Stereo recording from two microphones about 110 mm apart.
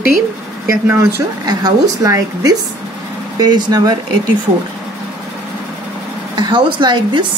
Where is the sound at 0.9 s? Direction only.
35° right (ahead or behind).